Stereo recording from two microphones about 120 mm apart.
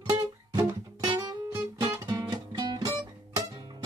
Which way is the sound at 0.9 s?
35° right (ahead or behind).